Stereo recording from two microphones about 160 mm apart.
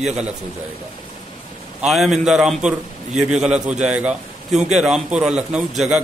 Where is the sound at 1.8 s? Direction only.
Centre (ahead or behind).